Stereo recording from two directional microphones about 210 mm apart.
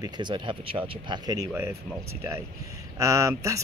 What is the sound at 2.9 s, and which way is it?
Speech, 15° right (ahead or behind).